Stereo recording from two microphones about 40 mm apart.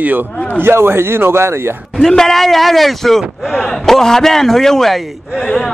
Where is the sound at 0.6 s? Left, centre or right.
Right.